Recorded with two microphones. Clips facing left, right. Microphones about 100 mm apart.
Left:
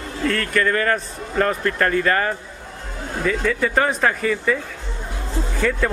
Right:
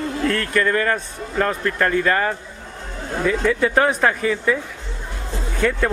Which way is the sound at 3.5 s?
5° right (ahead or behind).